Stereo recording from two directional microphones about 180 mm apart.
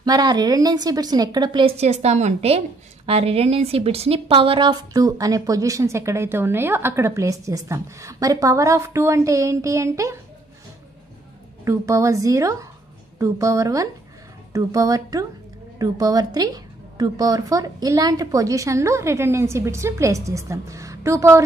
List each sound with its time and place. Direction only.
0.0 s a woman's voice: 20° right (ahead or behind)
11.6 s a woman's voice: 15° right (ahead or behind)